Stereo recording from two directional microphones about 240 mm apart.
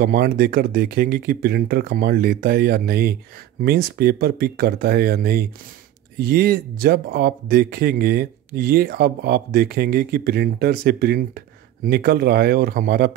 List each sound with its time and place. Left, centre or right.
0.0 s speech: right